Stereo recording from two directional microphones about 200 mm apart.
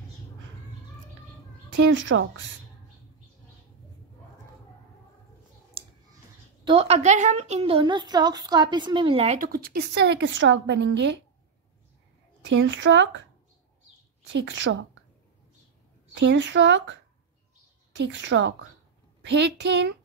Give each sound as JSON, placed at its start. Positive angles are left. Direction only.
{"t": 1.8, "sound": "speech", "side_deg": -70}
{"t": 5.8, "sound": "clicking", "side_deg": -30}
{"t": 6.6, "sound": "a woman's voice", "side_deg": -25}
{"t": 9.5, "sound": "a woman's voice", "side_deg": -50}
{"t": 12.4, "sound": "speech", "side_deg": -70}
{"t": 14.3, "sound": "speech", "side_deg": -70}
{"t": 16.2, "sound": "a woman's voice", "side_deg": -65}